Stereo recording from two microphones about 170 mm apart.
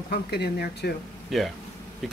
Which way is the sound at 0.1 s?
70° left (ahead or behind).